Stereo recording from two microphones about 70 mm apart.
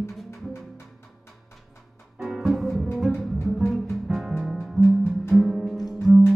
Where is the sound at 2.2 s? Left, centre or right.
Centre.